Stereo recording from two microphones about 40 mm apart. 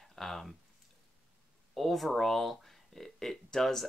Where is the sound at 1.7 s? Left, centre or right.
Centre.